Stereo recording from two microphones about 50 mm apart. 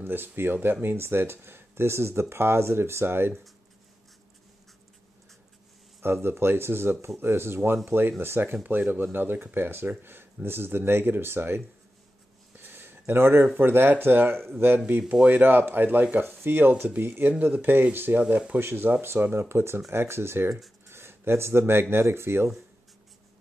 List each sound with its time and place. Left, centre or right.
0.0 s speech: right
6.2 s speech: right
12.5 s a sound: right
13.6 s speech: right
14.9 s speech: right